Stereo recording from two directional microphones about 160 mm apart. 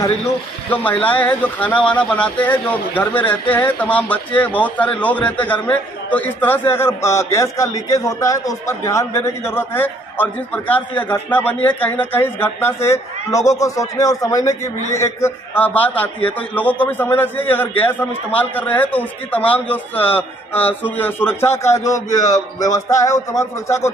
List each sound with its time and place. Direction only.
0.7 s a man's voice: 10° left (ahead or behind)